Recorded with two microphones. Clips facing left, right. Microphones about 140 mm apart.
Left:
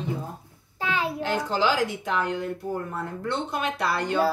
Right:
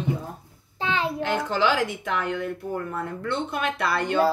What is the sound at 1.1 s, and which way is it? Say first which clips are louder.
Speech: right 1 dB; 35° left (ahead or behind).